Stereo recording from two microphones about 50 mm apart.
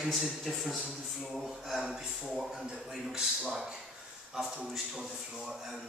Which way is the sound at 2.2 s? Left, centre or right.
Centre.